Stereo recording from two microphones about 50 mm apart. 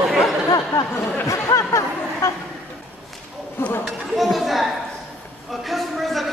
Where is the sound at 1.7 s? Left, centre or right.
Left.